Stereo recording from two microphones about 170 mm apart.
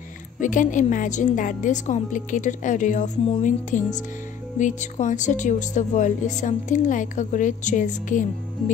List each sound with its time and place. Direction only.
0.4 s speech: 50° left (ahead or behind)